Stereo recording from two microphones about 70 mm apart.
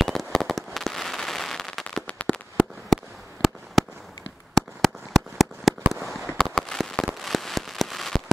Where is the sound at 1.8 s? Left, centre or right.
Centre.